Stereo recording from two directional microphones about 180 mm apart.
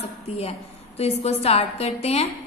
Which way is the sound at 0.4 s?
35° left (ahead or behind).